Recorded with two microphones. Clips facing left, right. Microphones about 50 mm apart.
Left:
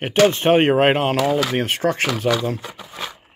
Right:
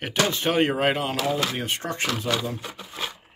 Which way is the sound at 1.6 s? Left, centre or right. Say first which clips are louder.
Left 7 dB; left.